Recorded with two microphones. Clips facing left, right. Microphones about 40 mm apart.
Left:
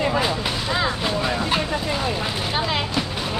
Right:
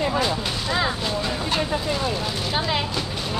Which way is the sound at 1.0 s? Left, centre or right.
Left.